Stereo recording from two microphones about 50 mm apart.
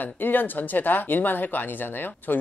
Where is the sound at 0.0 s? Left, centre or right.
Left.